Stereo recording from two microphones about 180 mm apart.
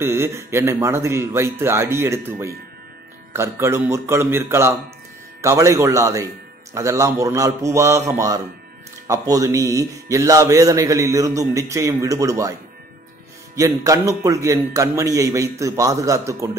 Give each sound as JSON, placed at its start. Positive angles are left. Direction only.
{"t": 0.0, "sound": "a man's voice", "side_deg": -15}
{"t": 13.6, "sound": "a man's voice", "side_deg": -20}